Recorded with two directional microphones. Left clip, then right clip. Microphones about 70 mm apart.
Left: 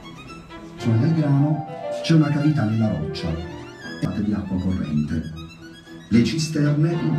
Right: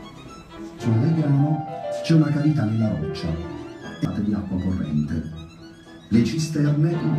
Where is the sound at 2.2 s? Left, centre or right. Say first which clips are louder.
Left 1 dB; centre.